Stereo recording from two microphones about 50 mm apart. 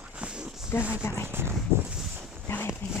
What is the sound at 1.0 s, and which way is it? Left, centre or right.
Speech, left.